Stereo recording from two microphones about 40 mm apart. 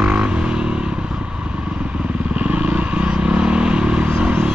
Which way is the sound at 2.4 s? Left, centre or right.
Right.